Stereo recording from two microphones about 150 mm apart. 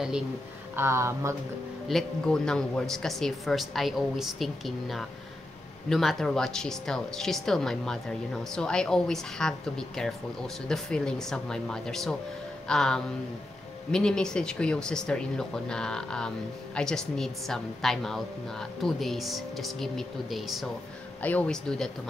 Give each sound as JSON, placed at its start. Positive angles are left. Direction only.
{"t": 0.7, "sound": "speech", "side_deg": -20}
{"t": 1.9, "sound": "speech", "side_deg": 5}
{"t": 21.2, "sound": "speech", "side_deg": 10}